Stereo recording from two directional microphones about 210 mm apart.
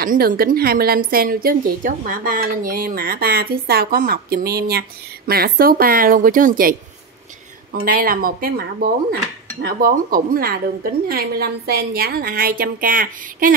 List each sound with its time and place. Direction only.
0.0 s a woman's voice: 40° right (ahead or behind)